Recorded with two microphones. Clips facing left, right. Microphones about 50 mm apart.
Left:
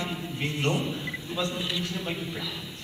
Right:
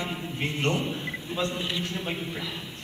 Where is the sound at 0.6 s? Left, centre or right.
Centre.